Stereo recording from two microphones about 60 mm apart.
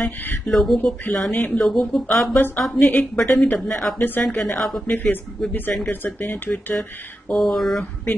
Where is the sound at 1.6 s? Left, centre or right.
Centre.